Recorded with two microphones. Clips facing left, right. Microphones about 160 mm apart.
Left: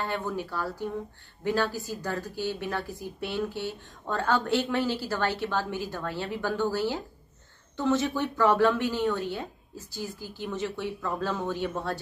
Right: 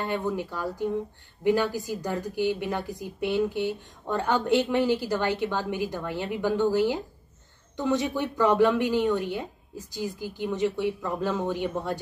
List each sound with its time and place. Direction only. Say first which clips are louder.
0.0 s a woman's voice: right 3 dB; 20° right (ahead or behind)